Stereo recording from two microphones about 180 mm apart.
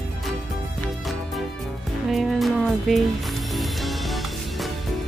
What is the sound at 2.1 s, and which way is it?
Music, centre (ahead or behind).